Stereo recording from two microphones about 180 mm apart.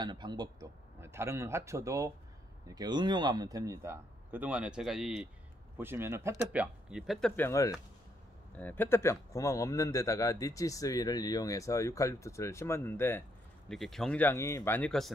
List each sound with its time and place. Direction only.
0.0 s a man's voice: 25° right (ahead or behind); by 13.2 s 10° left (ahead or behind)
13.7 s a man's voice: centre (ahead or behind)